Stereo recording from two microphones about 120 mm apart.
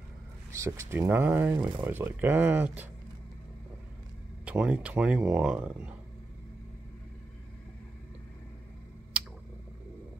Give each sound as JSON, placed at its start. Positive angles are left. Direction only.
{"t": 0.5, "sound": "speech", "side_deg": -25}
{"t": 4.5, "sound": "speech", "side_deg": -10}